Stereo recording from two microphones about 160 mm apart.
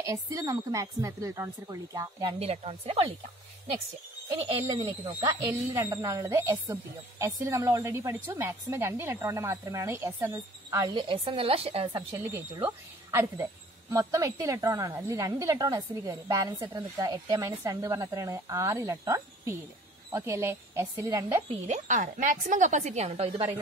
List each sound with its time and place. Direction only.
0.0 s a woman's voice: 20° right (ahead or behind)
2.3 s a woman's voice: 40° right (ahead or behind)
4.4 s a woman's voice: 35° right (ahead or behind)
5.2 s a woman's voice: 15° right (ahead or behind)
11.0 s a woman's voice: 35° right (ahead or behind)
12.6 s a woman's voice: 15° right (ahead or behind)
21.6 s a woman's voice: 50° right (ahead or behind)